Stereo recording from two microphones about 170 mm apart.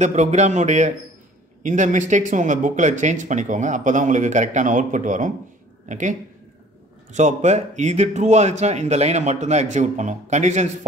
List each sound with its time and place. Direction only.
0.0 s speech: 45° right (ahead or behind)